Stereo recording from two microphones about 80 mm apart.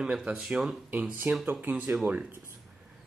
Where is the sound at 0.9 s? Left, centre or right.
Centre.